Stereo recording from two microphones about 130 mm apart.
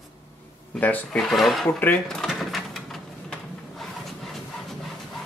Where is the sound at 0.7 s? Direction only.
10° left (ahead or behind).